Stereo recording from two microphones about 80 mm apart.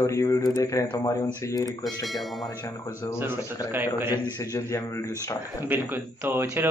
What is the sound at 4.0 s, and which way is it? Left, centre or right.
Speech, right.